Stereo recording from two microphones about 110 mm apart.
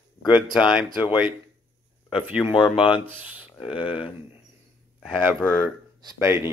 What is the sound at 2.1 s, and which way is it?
Speech, 5° right (ahead or behind).